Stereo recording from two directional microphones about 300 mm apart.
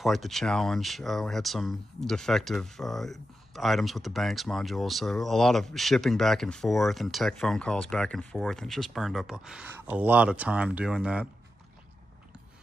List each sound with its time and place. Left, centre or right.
0.0 s speech: centre